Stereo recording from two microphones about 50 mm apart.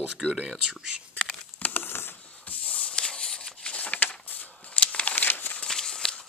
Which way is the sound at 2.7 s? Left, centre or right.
Left.